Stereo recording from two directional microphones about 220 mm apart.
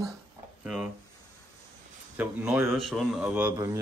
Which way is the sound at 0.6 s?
5° right (ahead or behind).